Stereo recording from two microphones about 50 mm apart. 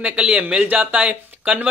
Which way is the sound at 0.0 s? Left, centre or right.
Centre.